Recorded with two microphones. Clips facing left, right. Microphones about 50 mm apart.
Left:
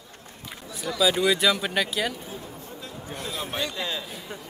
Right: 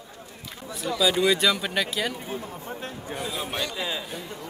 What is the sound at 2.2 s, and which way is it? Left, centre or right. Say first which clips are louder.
Speech: right 4 dB; right.